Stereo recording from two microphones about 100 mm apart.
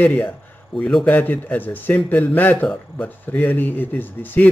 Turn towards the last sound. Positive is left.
turn(degrees=20)  # may be behind; listen again after turning